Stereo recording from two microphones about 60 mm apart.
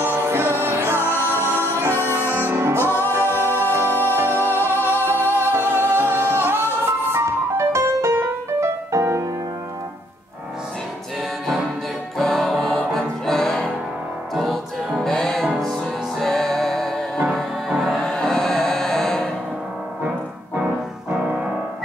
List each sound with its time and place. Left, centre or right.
0.1 s music: right
2.6 s music: right
7.1 s music: right
12.2 s music: centre
18.1 s music: centre
20.5 s music: right